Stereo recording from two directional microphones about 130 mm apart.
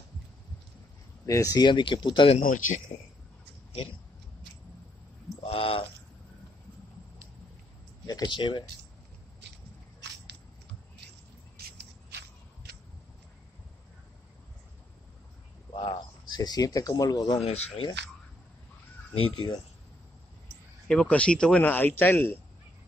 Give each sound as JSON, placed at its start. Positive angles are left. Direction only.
{"t": 1.2, "sound": "speech", "side_deg": 25}
{"t": 2.4, "sound": "speech", "side_deg": 90}
{"t": 5.4, "sound": "speech", "side_deg": 45}
{"t": 8.1, "sound": "speech", "side_deg": 35}
{"t": 15.7, "sound": "a sound", "side_deg": 40}
{"t": 17.4, "sound": "speech", "side_deg": 50}
{"t": 19.1, "sound": "speech", "side_deg": 40}
{"t": 20.9, "sound": "speech", "side_deg": 10}